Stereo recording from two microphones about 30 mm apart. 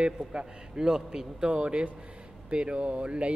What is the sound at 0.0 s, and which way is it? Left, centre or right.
Speech, right.